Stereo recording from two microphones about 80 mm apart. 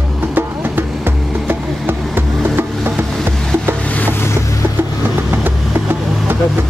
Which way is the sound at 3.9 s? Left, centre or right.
Left.